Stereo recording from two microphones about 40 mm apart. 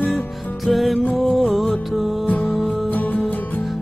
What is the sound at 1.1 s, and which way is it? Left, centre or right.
Music, centre.